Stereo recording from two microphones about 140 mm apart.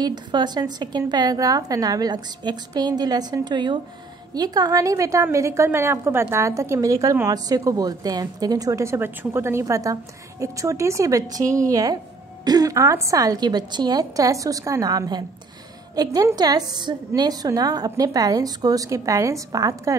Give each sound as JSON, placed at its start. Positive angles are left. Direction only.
{"t": 0.0, "sound": "a woman's voice", "side_deg": -30}